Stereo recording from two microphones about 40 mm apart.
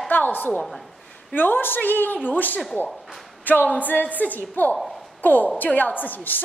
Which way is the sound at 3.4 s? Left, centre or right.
Left.